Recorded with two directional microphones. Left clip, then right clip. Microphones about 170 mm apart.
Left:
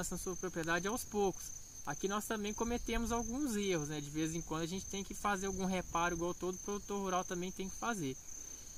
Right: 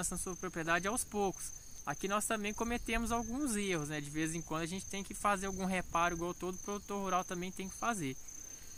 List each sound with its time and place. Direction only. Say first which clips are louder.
0.0 s speech: even; 20° right (ahead or behind)